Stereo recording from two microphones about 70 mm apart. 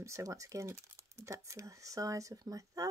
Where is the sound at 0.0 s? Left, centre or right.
Right.